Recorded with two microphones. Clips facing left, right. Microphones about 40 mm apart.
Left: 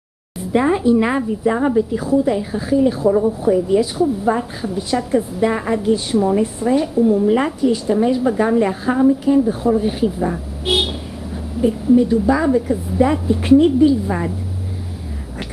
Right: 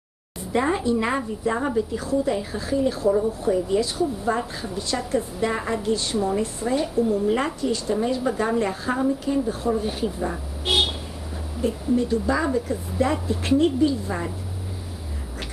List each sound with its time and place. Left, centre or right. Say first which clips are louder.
0.5 s a woman's voice: left 7 dB; centre
10.3 s a sound: left 4 dB; centre
11.6 s a woman's voice: left 9 dB; centre